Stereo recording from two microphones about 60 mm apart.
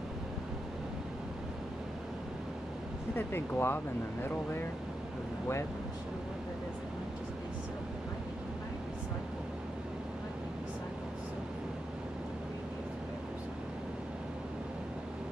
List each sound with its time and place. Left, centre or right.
3.2 s speech: left